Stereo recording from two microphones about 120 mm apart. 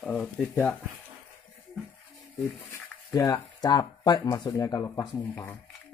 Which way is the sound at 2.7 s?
30° left (ahead or behind).